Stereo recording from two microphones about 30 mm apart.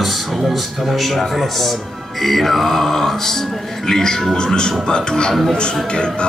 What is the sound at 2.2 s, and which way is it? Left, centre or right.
Music, centre.